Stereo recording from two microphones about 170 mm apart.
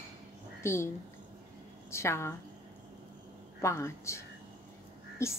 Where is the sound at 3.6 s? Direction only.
15° left (ahead or behind).